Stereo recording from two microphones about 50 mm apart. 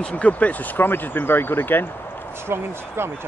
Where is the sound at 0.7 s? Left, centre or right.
Left.